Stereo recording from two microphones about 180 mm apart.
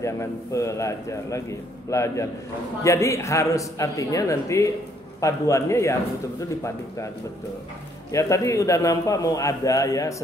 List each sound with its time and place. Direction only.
0.0 s a man's voice: 15° left (ahead or behind)
8.1 s a man's voice: 15° left (ahead or behind)